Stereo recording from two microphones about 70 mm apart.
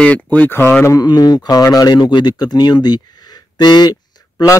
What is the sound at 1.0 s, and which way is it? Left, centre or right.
Speech, left.